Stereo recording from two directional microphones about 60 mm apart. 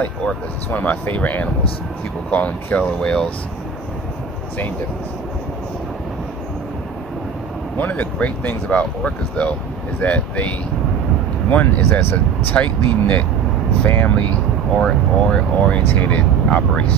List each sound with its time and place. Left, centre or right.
0.7 s speech: left
3.0 s speech: centre
7.7 s speech: left
11.5 s speech: left
12.5 s speech: left
13.8 s speech: left
14.8 s speech: centre